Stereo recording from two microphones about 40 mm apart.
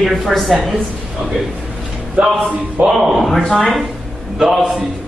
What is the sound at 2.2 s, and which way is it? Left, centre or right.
Speech, right.